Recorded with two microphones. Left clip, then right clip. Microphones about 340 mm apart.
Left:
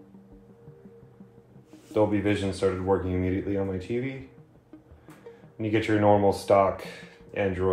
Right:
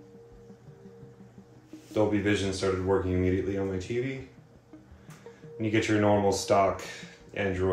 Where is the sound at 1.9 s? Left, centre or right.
Centre.